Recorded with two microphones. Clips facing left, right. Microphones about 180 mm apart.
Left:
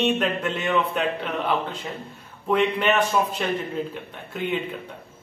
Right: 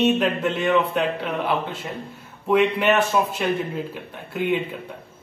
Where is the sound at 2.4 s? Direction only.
5° right (ahead or behind).